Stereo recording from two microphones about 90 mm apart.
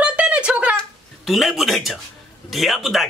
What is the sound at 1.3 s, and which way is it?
A man's voice, centre (ahead or behind).